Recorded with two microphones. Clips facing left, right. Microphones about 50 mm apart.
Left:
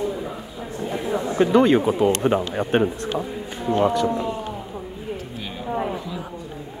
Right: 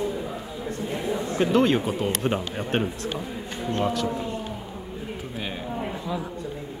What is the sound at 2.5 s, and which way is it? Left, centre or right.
Speech, centre.